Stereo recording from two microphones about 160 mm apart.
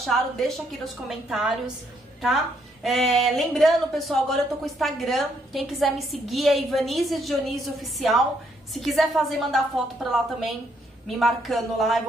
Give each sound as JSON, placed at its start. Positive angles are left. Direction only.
{"t": 0.0, "sound": "a woman's voice", "side_deg": 0}
{"t": 11.1, "sound": "a woman's voice", "side_deg": 0}